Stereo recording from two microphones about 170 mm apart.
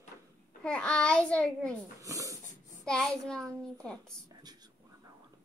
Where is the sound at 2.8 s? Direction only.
5° left (ahead or behind).